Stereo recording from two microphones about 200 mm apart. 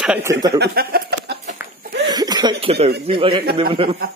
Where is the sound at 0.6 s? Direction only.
50° right (ahead or behind).